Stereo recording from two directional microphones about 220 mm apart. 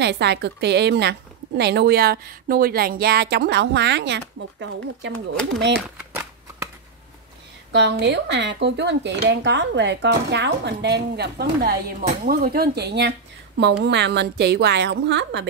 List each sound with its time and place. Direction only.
0.0 s speech: 50° right (ahead or behind)
5.3 s speech: 5° left (ahead or behind)
5.9 s shuffling cards: 10° right (ahead or behind)
7.7 s speech: 50° right (ahead or behind)